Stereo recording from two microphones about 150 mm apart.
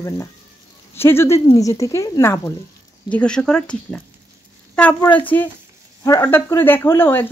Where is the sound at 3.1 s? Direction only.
5° left (ahead or behind).